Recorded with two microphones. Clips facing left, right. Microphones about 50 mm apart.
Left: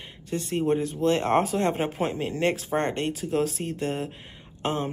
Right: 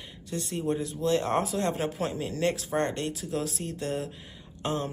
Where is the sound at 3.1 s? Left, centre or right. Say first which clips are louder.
Left 6 dB; left.